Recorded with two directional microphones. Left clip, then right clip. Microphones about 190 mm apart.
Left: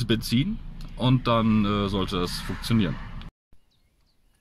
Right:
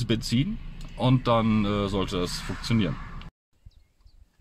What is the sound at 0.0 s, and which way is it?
Speech, 5° left (ahead or behind).